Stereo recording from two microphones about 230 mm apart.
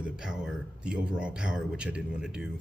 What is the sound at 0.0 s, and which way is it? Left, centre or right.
Speech, centre.